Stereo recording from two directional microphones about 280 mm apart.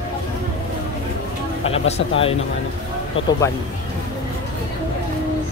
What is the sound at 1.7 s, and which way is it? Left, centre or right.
Speech, left.